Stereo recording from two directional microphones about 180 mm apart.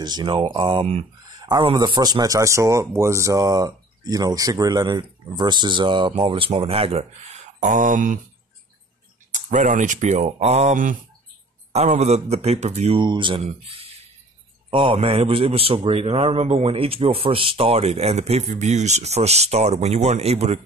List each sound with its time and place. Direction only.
0.0 s speech: 25° right (ahead or behind)
7.6 s speech: 45° right (ahead or behind)
9.3 s a man's voice: 45° right (ahead or behind)